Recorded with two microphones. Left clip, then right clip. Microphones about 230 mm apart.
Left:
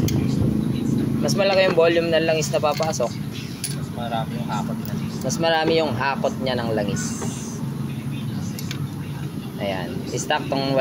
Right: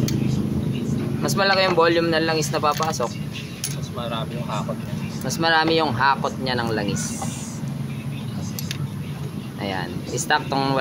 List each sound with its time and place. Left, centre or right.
1.2 s speech: centre
5.3 s speech: centre
9.7 s speech: centre